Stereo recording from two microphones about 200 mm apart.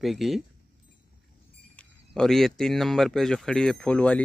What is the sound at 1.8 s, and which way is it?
Speech, 5° left (ahead or behind).